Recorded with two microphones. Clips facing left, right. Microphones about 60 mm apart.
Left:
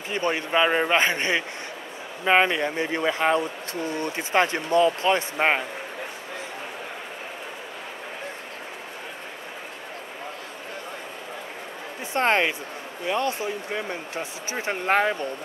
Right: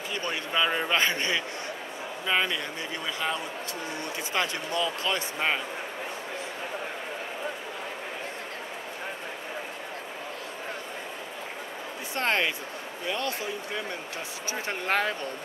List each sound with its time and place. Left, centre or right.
0.1 s speech: left
12.1 s speech: left